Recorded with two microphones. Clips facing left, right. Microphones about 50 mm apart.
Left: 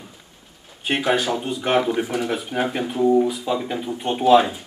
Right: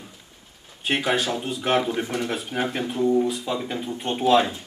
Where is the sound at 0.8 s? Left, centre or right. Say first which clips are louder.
Left 3 dB; centre.